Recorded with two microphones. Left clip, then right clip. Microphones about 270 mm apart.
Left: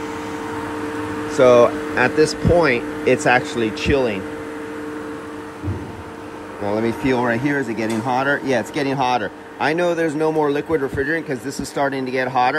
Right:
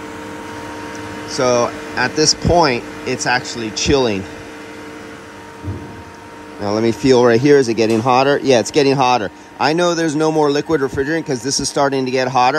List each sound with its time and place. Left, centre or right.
1.4 s speech: centre
3.8 s speech: centre
6.7 s speech: centre